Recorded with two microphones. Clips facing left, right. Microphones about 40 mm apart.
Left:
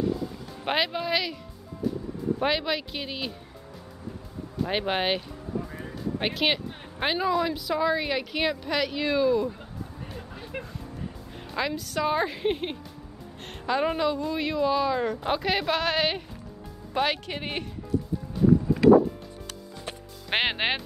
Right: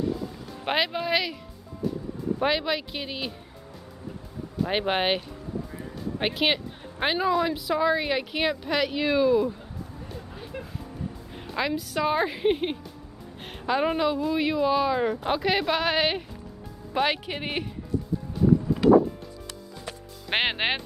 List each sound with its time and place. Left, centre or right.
0.0 s music: centre
4.6 s speech: centre
10.5 s music: left
11.5 s a woman's voice: centre
20.2 s music: centre